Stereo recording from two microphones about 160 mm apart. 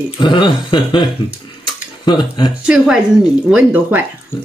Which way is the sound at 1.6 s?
30° left (ahead or behind).